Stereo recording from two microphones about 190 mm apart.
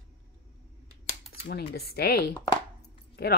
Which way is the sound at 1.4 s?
55° left (ahead or behind).